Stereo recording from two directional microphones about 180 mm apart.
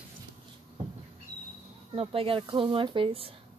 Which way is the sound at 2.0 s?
30° right (ahead or behind).